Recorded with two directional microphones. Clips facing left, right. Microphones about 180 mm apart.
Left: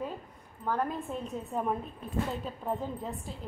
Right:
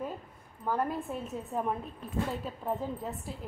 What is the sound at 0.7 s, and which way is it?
A woman's voice, 5° right (ahead or behind).